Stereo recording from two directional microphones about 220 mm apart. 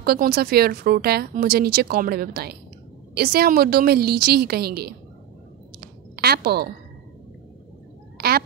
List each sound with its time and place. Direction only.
0.0 s speech: 45° right (ahead or behind)
6.1 s speech: 45° right (ahead or behind)
8.2 s a sound: 45° right (ahead or behind)